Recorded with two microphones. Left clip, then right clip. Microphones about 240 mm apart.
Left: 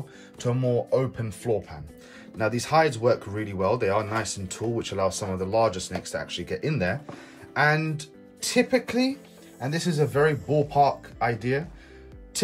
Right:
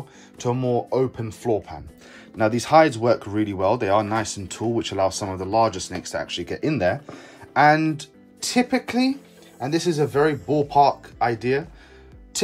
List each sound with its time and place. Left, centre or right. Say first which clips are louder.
0.4 s speech: right 3 dB; right